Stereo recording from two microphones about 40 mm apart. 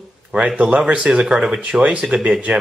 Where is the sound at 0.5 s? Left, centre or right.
Right.